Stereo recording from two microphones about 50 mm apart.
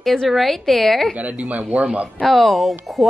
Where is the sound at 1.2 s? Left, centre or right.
Right.